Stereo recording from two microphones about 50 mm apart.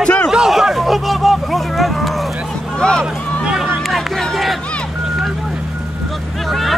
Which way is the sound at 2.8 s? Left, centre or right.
Centre.